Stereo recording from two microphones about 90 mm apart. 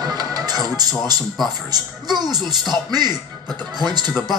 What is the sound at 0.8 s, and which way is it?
Speech, 45° right (ahead or behind).